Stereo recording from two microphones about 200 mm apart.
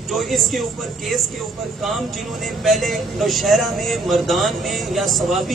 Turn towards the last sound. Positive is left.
turn(degrees=0)  # may be behind; listen again after turning